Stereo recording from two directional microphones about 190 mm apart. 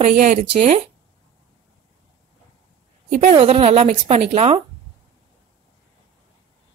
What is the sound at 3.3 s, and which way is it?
Speech, 30° right (ahead or behind).